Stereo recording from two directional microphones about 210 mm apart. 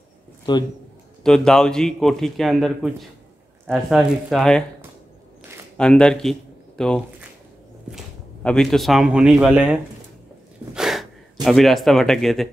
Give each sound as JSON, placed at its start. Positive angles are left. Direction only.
{"t": 0.5, "sound": "a man's voice", "side_deg": 20}
{"t": 1.2, "sound": "a man's voice", "side_deg": 5}
{"t": 5.8, "sound": "a man's voice", "side_deg": 5}
{"t": 10.7, "sound": "a sound", "side_deg": 0}
{"t": 11.4, "sound": "a man's voice", "side_deg": 0}